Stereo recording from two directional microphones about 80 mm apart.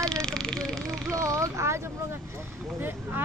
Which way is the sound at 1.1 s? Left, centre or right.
Right.